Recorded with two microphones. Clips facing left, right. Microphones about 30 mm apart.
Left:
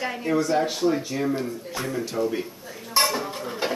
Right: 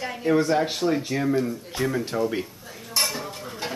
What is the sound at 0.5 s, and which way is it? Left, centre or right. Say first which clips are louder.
Speech: even; centre.